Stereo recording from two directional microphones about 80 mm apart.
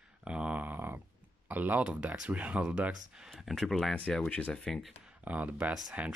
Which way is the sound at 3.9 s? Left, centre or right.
Centre.